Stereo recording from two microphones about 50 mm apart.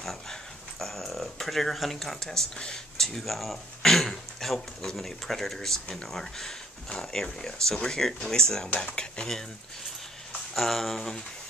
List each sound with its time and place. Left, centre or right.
0.0 s speech: centre
8.6 s speech: left
10.5 s speech: centre